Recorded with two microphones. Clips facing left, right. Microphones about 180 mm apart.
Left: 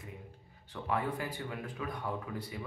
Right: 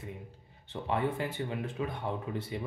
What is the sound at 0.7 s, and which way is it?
Speech, 25° right (ahead or behind).